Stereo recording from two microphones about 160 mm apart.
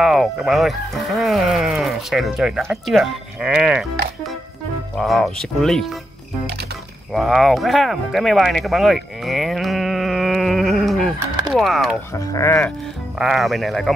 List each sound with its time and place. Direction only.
0.0 s speech: centre (ahead or behind)
7.1 s speech: centre (ahead or behind)
12.3 s speech: 20° left (ahead or behind)
13.2 s speech: centre (ahead or behind)